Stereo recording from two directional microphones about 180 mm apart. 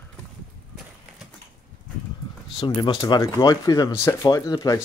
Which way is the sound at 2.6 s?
30° left (ahead or behind).